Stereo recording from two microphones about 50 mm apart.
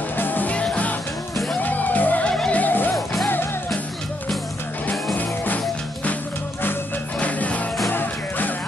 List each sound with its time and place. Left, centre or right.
0.2 s music: left
1.6 s music: left
5.1 s music: left
7.2 s music: left
7.9 s music: left